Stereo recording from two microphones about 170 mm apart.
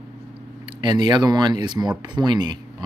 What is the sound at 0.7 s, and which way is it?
Speech, 25° right (ahead or behind).